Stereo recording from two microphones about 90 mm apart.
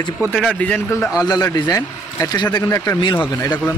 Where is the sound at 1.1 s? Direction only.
45° left (ahead or behind).